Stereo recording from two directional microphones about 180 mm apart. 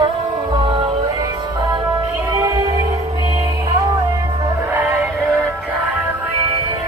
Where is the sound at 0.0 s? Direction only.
30° right (ahead or behind).